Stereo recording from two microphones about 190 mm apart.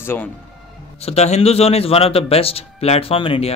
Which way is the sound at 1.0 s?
35° left (ahead or behind).